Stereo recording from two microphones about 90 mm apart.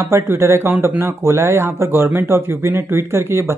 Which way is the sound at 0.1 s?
30° right (ahead or behind).